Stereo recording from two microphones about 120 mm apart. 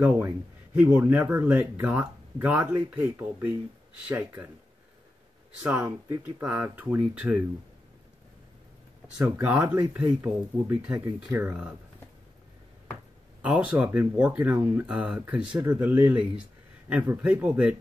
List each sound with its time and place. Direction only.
0.7 s speech: 15° right (ahead or behind)
5.6 s speech: 20° right (ahead or behind)
9.2 s speech: 15° right (ahead or behind)
13.4 s speech: 10° right (ahead or behind)